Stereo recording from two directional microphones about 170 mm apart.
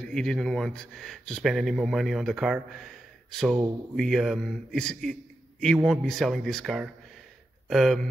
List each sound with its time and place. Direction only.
0.0 s speech: 5° left (ahead or behind)